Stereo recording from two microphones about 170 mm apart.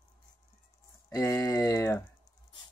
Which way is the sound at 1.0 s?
15° left (ahead or behind).